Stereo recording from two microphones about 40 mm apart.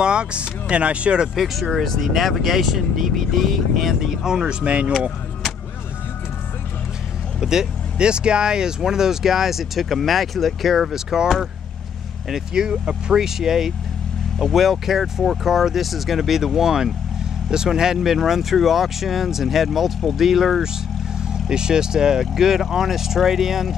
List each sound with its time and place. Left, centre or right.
0.0 s speech: right
1.4 s speech: centre; by 4.9 s right
7.3 s speech: centre
12.5 s speech: centre
21.3 s speech: centre